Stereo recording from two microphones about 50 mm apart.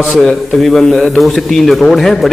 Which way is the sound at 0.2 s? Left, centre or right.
Centre.